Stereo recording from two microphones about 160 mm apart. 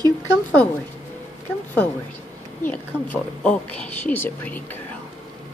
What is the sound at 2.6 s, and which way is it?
A woman's voice, 10° left (ahead or behind).